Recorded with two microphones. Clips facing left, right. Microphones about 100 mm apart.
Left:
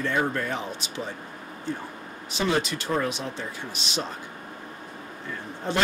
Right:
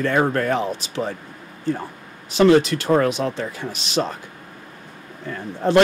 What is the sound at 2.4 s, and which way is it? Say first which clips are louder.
Speech: right 11 dB; 70° right (ahead or behind).